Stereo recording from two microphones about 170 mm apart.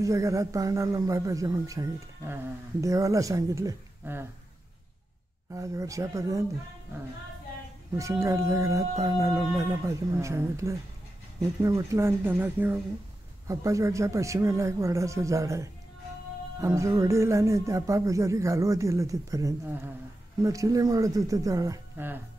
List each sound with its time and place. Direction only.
0.0 s speech: 20° right (ahead or behind)
5.5 s speech: 20° right (ahead or behind)
8.0 s speech: 20° right (ahead or behind)